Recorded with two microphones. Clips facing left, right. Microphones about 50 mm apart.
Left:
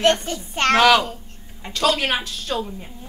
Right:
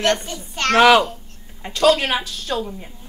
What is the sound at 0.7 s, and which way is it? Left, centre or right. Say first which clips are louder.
Speech: right 3 dB; centre.